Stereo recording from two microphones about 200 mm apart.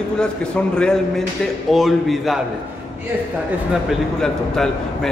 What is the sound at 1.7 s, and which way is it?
Speech, centre (ahead or behind).